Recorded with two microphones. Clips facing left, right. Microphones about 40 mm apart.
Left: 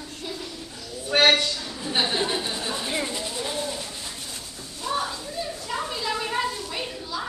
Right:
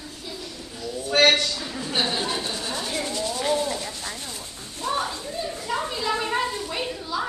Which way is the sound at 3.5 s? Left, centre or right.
Right.